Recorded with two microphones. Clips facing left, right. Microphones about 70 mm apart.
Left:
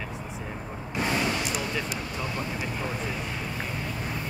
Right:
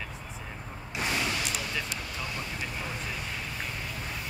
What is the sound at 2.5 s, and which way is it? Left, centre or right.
Vehicle, centre.